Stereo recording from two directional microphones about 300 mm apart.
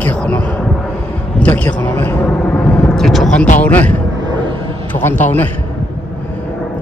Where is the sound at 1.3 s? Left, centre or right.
Centre.